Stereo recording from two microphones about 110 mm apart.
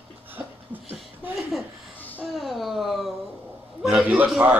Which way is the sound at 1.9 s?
15° left (ahead or behind).